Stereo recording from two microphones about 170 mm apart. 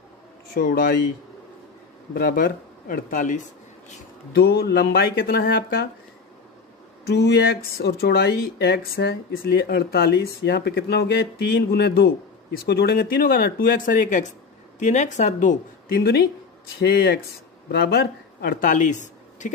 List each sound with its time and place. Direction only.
0.6 s speech: 55° left (ahead or behind)
2.1 s speech: 60° left (ahead or behind)
4.3 s speech: 70° left (ahead or behind)
7.1 s speech: 75° left (ahead or behind); by 16.0 s 45° left (ahead or behind)
16.8 s speech: 70° left (ahead or behind); by 19.5 s 45° left (ahead or behind)